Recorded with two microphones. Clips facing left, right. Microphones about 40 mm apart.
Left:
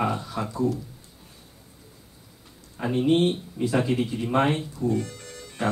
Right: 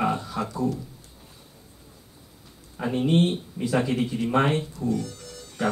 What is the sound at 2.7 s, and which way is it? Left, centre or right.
Speech, centre.